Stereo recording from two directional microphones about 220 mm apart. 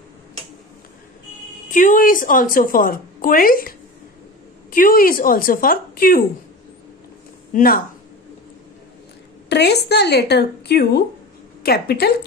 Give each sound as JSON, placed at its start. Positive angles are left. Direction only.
{"t": 1.7, "sound": "a woman's voice", "side_deg": 35}
{"t": 7.5, "sound": "a woman's voice", "side_deg": 40}
{"t": 9.5, "sound": "a woman's voice", "side_deg": 50}